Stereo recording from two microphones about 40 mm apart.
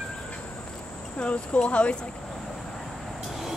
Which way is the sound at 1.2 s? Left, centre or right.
Left.